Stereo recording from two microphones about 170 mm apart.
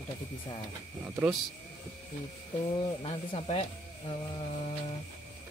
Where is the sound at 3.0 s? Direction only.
35° left (ahead or behind).